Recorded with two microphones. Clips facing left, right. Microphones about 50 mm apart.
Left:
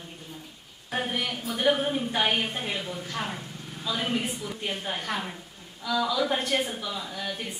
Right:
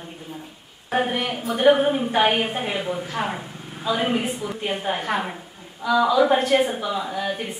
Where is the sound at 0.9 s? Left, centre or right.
Centre.